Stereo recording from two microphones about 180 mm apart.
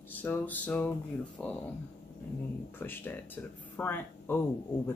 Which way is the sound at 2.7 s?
10° left (ahead or behind).